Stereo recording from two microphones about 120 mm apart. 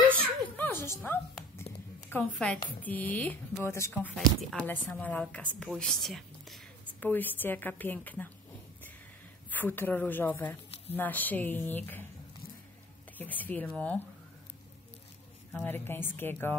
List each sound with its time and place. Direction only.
0.2 s a sound: 15° left (ahead or behind)
2.3 s a woman's voice: 10° left (ahead or behind)
4.1 s speech: centre (ahead or behind)
4.6 s a woman's voice: 15° left (ahead or behind)
7.0 s a woman's voice: 15° left (ahead or behind)
9.5 s a woman's voice: 15° left (ahead or behind)
13.2 s a woman's voice: 15° left (ahead or behind)
15.6 s a woman's voice: 20° left (ahead or behind)